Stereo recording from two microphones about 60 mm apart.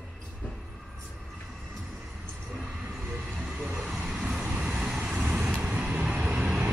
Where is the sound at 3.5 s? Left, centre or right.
Centre.